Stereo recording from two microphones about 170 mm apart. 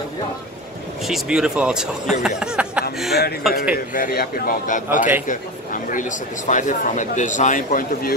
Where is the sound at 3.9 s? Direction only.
60° left (ahead or behind).